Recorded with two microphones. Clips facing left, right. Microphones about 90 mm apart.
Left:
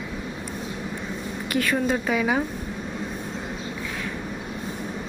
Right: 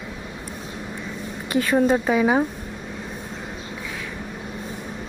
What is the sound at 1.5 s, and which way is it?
Speech, 25° right (ahead or behind).